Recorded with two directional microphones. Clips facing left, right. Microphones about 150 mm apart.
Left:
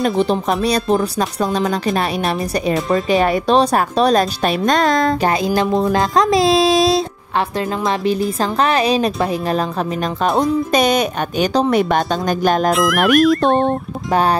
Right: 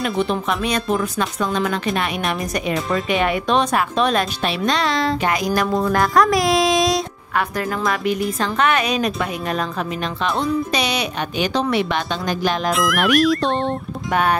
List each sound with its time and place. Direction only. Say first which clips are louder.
0.2 s speech: left 4 dB; 35° left (ahead or behind)
5.3 s speech: left 3 dB; 25° left (ahead or behind); by 12.7 s 45° left (ahead or behind)
12.7 s music: left 4 dB; centre (ahead or behind)